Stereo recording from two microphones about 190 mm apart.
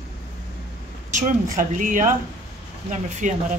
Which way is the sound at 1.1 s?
45° right (ahead or behind).